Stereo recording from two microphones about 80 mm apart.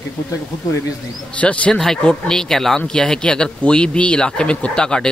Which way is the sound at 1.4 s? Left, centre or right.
Centre.